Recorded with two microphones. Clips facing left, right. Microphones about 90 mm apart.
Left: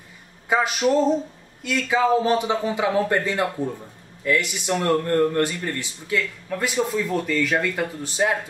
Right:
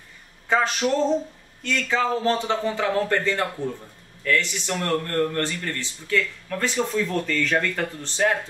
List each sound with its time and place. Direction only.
0.5 s speech: 10° left (ahead or behind)